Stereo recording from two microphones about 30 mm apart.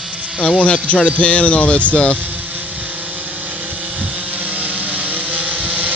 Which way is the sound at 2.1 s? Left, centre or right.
Right.